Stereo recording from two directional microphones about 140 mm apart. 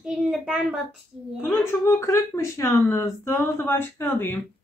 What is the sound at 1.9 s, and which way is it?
A woman's voice, 20° left (ahead or behind).